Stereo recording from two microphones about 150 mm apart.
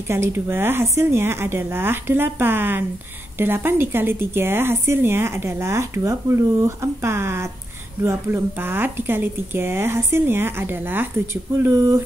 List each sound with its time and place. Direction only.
0.1 s speech: 15° right (ahead or behind)